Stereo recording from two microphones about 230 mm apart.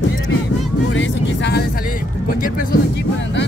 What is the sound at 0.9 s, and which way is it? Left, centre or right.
Vehicle, left.